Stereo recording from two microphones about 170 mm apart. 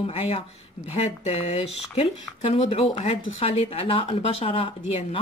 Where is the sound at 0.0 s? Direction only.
35° left (ahead or behind).